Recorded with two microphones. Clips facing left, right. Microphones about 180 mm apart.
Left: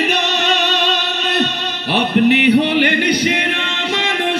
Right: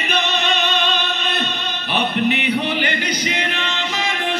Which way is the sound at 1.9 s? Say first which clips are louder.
Left 6 dB; 75° left (ahead or behind).